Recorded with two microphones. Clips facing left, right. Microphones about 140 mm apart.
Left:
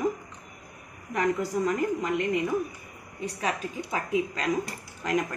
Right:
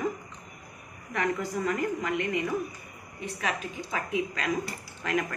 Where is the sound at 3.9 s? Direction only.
30° left (ahead or behind).